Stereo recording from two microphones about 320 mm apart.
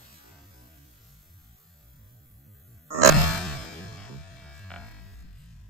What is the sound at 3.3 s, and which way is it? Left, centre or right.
Music, centre.